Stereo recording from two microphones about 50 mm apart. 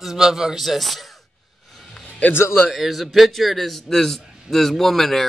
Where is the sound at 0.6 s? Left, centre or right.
Centre.